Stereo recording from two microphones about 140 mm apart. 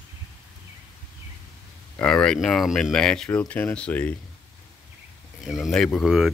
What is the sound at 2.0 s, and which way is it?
Speech, 5° left (ahead or behind).